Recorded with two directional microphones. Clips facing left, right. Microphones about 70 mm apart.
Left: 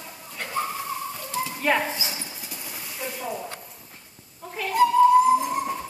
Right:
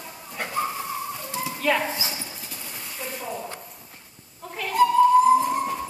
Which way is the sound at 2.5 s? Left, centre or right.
Centre.